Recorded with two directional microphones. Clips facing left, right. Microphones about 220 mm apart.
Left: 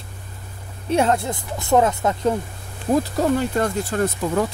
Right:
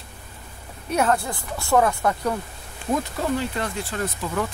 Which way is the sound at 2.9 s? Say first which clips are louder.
Left 6 dB; 35° left (ahead or behind).